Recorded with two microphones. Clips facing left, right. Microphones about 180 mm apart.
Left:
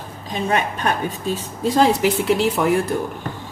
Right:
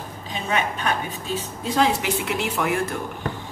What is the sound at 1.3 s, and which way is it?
A woman's voice, 40° left (ahead or behind).